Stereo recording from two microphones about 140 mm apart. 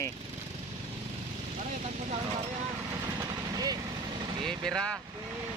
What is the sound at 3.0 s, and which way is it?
Vehicle, 25° right (ahead or behind).